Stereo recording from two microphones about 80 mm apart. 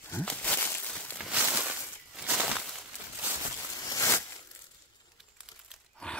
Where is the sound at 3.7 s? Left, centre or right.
Left.